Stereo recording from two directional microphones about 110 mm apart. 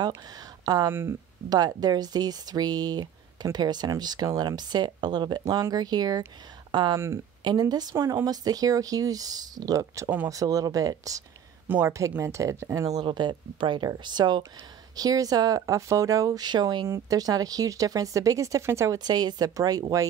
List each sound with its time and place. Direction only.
0.4 s a sound: 35° right (ahead or behind)
0.8 s speech: 20° right (ahead or behind)
1.5 s speech: 35° right (ahead or behind)
11.6 s speech: 15° right (ahead or behind)
12.2 s speech: 30° right (ahead or behind)
13.0 s speech: 45° right (ahead or behind)
16.8 s speech: 30° right (ahead or behind)
18.9 s speech: 40° right (ahead or behind)